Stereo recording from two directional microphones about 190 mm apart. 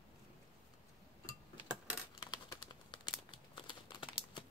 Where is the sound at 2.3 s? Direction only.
25° left (ahead or behind).